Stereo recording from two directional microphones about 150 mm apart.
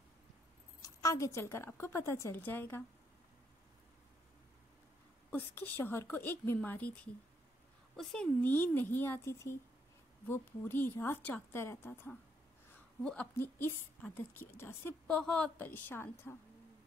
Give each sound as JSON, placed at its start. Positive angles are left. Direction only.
{"t": 0.8, "sound": "a woman's voice", "side_deg": 20}
{"t": 5.3, "sound": "a woman's voice", "side_deg": 10}
{"t": 7.9, "sound": "a woman's voice", "side_deg": 5}